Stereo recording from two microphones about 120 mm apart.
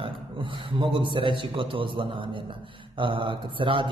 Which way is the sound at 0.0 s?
45° right (ahead or behind).